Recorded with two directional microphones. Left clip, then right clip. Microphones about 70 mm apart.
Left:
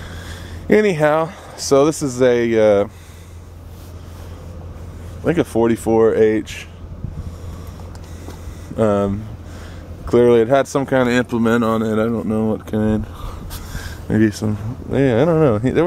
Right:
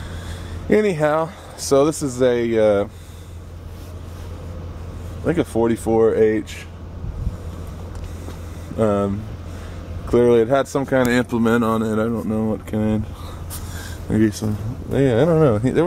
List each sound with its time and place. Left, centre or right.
0.7 s speech: left
5.2 s speech: left
8.7 s speech: left
11.8 s speech: left; by 15.8 s centre